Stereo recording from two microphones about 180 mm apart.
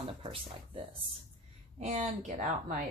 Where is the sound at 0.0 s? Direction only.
30° right (ahead or behind).